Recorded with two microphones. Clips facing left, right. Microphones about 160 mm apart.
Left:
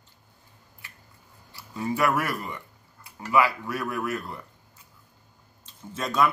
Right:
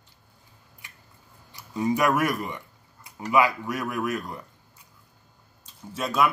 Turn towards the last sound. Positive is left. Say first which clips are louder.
# even
turn(degrees=-5)  # may be behind; listen again after turning